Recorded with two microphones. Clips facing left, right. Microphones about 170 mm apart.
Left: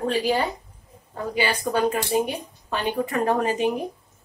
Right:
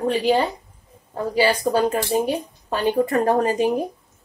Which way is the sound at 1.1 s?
35° right (ahead or behind).